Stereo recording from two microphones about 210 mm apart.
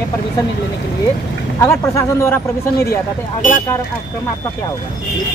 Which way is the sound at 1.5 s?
15° left (ahead or behind).